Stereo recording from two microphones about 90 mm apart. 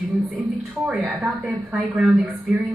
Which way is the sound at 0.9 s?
10° right (ahead or behind).